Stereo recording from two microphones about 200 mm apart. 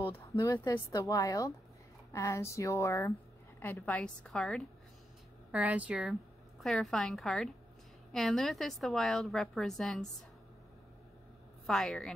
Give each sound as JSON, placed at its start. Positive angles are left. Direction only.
{"t": 0.0, "sound": "a woman's voice", "side_deg": 10}
{"t": 11.6, "sound": "a woman's voice", "side_deg": 0}